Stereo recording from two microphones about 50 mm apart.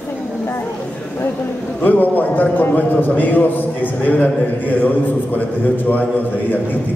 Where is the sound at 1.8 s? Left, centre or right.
Left.